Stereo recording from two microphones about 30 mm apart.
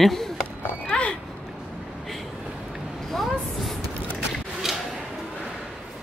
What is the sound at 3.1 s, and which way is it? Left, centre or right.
Vehicle, centre.